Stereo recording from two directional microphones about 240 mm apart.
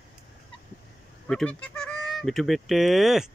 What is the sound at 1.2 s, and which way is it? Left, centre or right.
Honk, centre.